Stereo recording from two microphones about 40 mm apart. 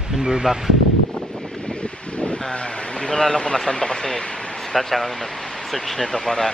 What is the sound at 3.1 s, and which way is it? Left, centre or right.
Speech, centre.